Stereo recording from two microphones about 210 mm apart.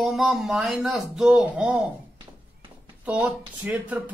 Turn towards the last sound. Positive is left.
turn(degrees=-5)  # may be behind; listen again after turning